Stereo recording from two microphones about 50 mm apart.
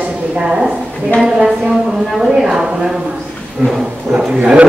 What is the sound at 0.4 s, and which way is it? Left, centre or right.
A woman's voice, centre.